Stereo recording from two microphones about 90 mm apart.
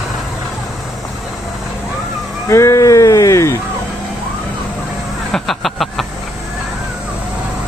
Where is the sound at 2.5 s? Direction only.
35° left (ahead or behind).